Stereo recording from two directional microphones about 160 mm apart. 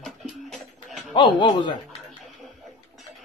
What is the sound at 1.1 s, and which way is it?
Speech, 30° left (ahead or behind).